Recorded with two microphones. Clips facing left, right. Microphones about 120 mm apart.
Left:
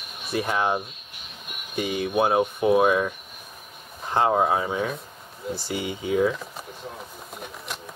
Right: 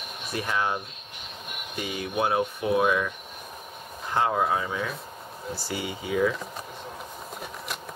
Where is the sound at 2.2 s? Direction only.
25° left (ahead or behind).